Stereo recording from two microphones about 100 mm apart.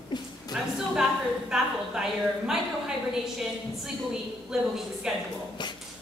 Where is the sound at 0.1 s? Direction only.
50° left (ahead or behind).